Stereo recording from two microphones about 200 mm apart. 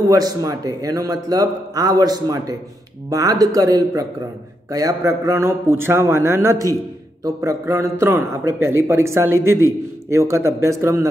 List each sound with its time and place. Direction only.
0.1 s a man's voice: 15° right (ahead or behind)